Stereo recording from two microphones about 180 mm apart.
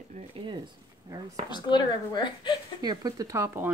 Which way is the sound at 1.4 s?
25° left (ahead or behind).